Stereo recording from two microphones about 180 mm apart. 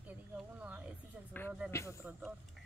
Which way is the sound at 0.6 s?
10° right (ahead or behind).